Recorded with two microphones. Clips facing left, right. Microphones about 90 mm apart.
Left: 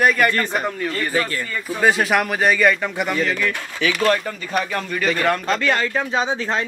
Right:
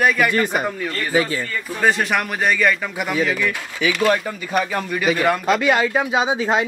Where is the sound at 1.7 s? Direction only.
5° left (ahead or behind).